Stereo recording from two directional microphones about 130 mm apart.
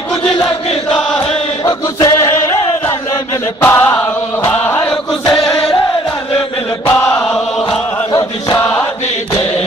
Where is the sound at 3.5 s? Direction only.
15° left (ahead or behind).